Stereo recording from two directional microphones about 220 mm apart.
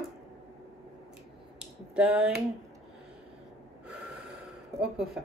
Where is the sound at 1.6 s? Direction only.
5° right (ahead or behind).